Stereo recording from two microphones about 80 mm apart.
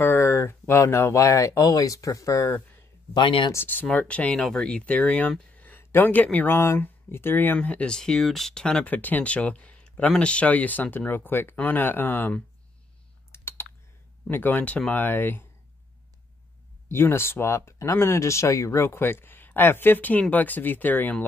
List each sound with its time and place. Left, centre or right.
0.0 s speech: left
3.2 s speech: left
3.5 s speech: left
13.3 s typing: left
14.3 s speech: left
16.9 s speech: left
18.9 s speech: left